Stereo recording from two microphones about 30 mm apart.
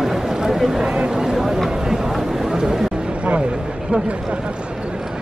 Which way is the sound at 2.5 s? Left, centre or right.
Centre.